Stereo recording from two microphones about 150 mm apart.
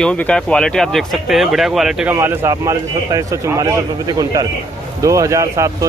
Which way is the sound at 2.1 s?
20° right (ahead or behind).